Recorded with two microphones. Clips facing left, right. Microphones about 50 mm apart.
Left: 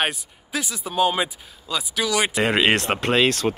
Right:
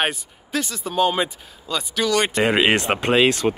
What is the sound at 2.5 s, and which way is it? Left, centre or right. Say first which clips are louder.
Speech: right 1 dB; centre.